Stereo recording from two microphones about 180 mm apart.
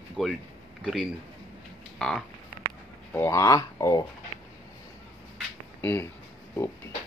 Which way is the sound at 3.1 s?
15° left (ahead or behind).